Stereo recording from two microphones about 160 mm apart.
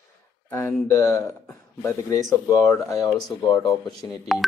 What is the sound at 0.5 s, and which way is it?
Speech, 15° left (ahead or behind).